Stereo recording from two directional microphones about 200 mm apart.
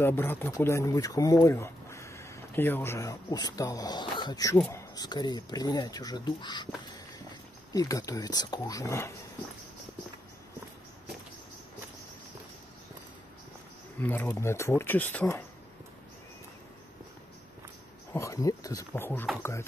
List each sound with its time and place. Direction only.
0.0 s speech: 10° left (ahead or behind)
7.7 s speech: 20° left (ahead or behind)
13.9 s speech: 10° left (ahead or behind)
18.1 s speech: 15° left (ahead or behind)